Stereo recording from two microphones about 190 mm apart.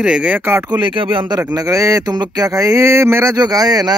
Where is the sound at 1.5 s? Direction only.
15° right (ahead or behind).